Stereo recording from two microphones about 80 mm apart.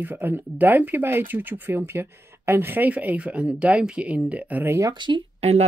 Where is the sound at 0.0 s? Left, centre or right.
Right.